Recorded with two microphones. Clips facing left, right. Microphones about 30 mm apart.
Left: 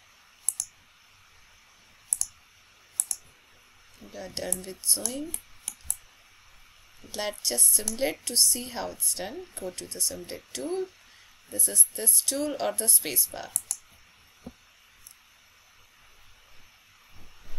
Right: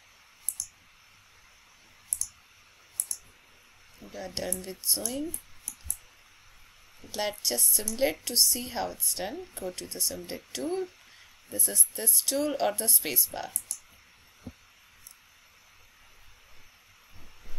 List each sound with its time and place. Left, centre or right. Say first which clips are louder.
2.1 s clicking: left 3 dB; left
4.0 s a woman's voice: even; centre
5.3 s a sound: left 2 dB; left
7.0 s a woman's voice: right 1 dB; centre
13.7 s clicking: left 4 dB; left